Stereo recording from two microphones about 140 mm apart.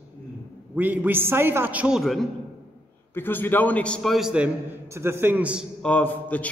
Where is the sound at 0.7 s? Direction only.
10° right (ahead or behind).